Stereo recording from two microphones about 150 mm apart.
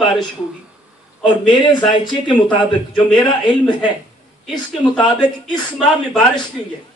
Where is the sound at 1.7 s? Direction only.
30° left (ahead or behind).